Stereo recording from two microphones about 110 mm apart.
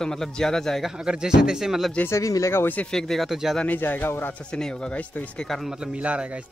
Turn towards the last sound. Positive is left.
turn(degrees=-10)  # may be behind; listen again after turning